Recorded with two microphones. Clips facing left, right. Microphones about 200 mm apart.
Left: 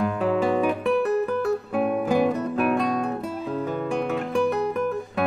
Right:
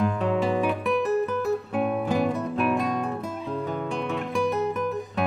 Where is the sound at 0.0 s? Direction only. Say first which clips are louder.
Left 2 dB; centre (ahead or behind).